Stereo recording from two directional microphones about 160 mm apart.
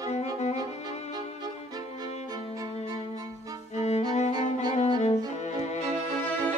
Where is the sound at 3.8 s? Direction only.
45° left (ahead or behind).